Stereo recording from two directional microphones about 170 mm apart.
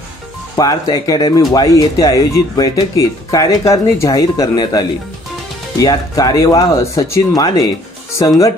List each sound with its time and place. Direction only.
0.6 s speech: 20° left (ahead or behind)